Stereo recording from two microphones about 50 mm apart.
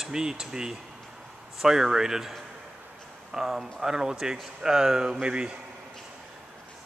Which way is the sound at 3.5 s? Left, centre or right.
Centre.